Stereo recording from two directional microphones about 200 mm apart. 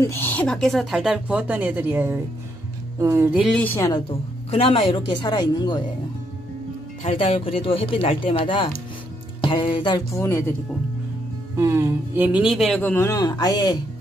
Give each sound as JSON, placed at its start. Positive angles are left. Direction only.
{"t": 0.0, "sound": "a man's voice", "side_deg": 10}
{"t": 3.3, "sound": "speech", "side_deg": 5}
{"t": 4.1, "sound": "speech", "side_deg": 30}
{"t": 7.1, "sound": "speech", "side_deg": 30}
{"t": 11.5, "sound": "a man's voice", "side_deg": -15}